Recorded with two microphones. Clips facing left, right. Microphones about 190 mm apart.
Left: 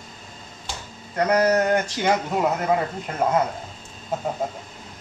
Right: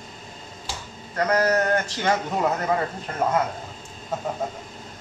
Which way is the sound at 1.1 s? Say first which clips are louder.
Left 2 dB; 15° left (ahead or behind).